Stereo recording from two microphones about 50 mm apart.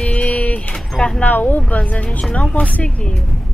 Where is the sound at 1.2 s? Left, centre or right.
Left.